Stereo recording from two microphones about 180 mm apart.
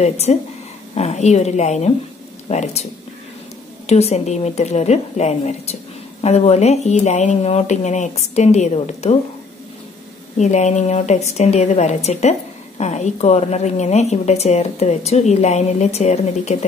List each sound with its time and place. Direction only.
0.0 s a woman's voice: 35° left (ahead or behind)
10.3 s a woman's voice: 40° left (ahead or behind)